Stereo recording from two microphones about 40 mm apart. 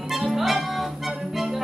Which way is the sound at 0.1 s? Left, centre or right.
Centre.